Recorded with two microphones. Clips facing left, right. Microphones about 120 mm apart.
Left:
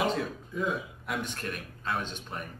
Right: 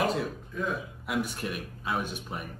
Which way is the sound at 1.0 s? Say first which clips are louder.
Right 6 dB; 5° right (ahead or behind).